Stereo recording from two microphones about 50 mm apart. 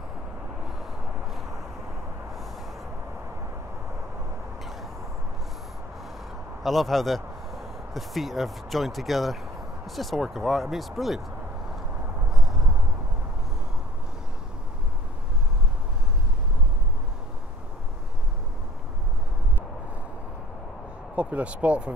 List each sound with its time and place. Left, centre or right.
6.6 s speech: centre
12.3 s a sound: centre
21.2 s speech: right